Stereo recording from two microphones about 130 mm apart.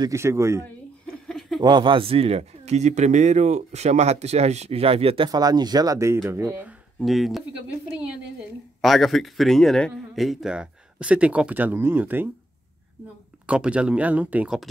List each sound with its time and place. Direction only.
0.1 s speech: 20° right (ahead or behind)
1.0 s a sound: 5° left (ahead or behind)
1.6 s speech: 35° right (ahead or behind)
5.3 s speech: 30° right (ahead or behind)
7.0 s speech: centre (ahead or behind)
8.8 s speech: centre (ahead or behind); by 12.3 s 15° right (ahead or behind)
13.5 s speech: 10° right (ahead or behind)